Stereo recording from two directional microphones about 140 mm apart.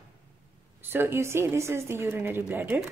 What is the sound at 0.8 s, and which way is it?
A woman's voice, 15° right (ahead or behind).